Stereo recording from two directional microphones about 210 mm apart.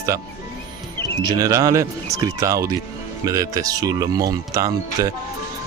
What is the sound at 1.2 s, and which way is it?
Speech, 15° right (ahead or behind).